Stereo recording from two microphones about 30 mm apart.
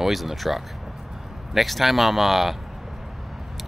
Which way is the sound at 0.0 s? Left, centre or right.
Centre.